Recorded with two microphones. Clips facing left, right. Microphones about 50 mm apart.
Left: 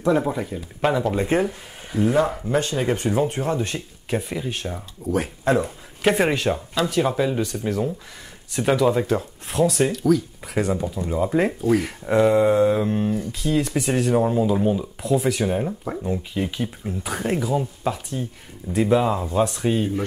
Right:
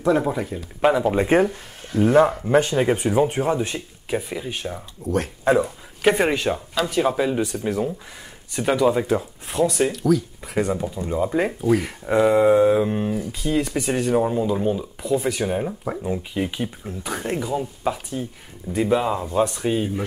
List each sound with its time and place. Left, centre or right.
0.0 s speech: centre
1.1 s speech: right
1.8 s speech: centre
2.4 s speech: right; by 5.3 s centre
5.4 s speech: centre
17.0 s speech: centre